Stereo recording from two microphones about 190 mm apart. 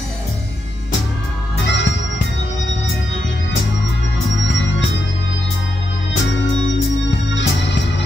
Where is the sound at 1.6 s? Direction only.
70° left (ahead or behind).